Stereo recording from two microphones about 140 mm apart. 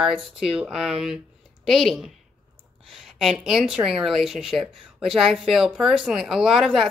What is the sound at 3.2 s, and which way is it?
Speech, centre (ahead or behind).